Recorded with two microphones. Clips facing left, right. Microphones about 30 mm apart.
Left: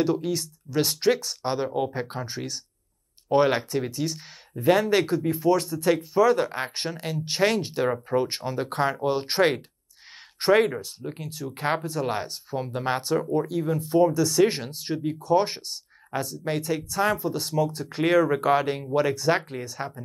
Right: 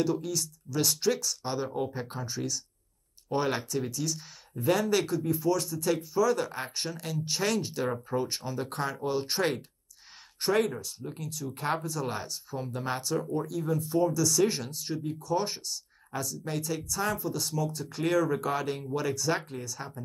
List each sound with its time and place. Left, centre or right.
0.0 s speech: left